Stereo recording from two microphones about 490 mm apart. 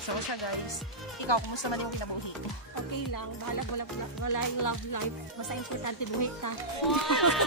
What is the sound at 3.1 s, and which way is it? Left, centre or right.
Speech, left.